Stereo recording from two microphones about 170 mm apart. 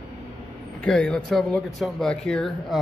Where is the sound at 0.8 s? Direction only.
5° left (ahead or behind).